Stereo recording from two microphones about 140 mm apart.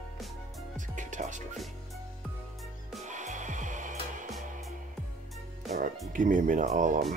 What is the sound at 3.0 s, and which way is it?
Music, 60° right (ahead or behind).